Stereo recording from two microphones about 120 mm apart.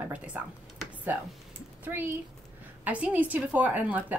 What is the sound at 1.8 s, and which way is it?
A woman's voice, 15° right (ahead or behind).